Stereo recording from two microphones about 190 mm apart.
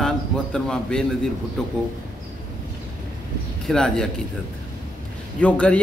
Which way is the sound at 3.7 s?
5° left (ahead or behind).